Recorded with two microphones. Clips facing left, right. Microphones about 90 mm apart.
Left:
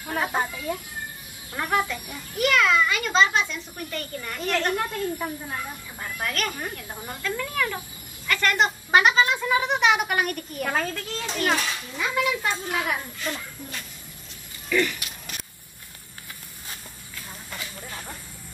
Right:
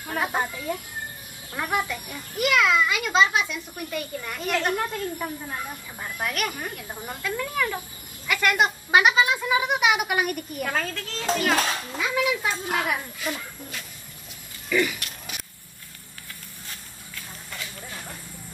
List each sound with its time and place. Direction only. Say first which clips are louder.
0.1 s a child's voice: even; centre (ahead or behind)
10.7 s speech: left 3 dB; 10° left (ahead or behind)
11.5 s a child's voice: right 3 dB; 45° right (ahead or behind)
12.0 s speech: even; centre (ahead or behind)
14.7 s a sound: even; 5° right (ahead or behind)
17.1 s clip-clop: left 1 dB; 5° left (ahead or behind)